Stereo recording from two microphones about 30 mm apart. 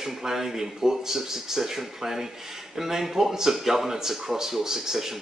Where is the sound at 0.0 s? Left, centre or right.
Centre.